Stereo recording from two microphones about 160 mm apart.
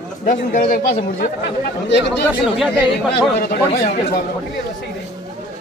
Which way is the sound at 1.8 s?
90° left.